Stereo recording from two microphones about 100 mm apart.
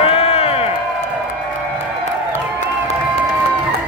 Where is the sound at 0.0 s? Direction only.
85° left.